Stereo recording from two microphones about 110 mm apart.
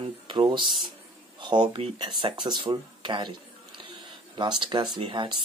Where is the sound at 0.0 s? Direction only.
50° right (ahead or behind).